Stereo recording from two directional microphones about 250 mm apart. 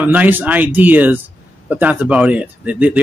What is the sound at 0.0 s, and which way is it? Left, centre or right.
Speech, centre.